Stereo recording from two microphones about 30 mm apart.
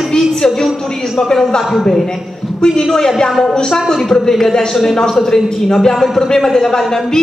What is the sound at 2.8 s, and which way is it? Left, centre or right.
A woman's voice, centre.